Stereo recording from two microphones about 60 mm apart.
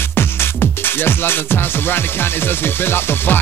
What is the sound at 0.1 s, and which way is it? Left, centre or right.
Music, left.